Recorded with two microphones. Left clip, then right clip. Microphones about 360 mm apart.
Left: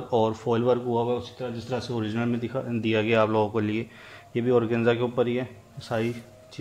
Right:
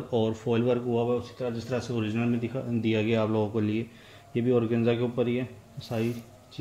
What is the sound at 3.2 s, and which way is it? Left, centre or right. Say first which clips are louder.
Speech: left 5 dB; left.